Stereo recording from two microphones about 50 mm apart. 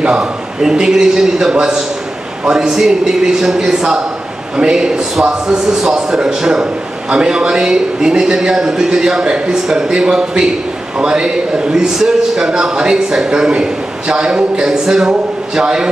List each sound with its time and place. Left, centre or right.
0.0 s a man's voice: centre